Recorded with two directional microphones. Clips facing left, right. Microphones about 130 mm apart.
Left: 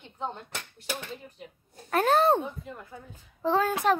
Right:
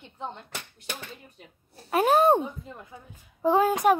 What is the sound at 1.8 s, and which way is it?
Speech, 10° right (ahead or behind).